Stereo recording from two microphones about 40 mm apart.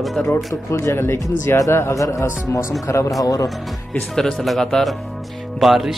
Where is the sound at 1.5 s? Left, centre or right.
Left.